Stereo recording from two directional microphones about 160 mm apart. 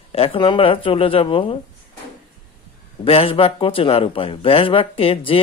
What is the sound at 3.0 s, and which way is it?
Speech, 35° left (ahead or behind).